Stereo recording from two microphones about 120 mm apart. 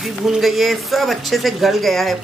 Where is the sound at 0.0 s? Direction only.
Centre (ahead or behind).